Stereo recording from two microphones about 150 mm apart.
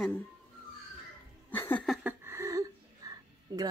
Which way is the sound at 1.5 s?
15° left (ahead or behind).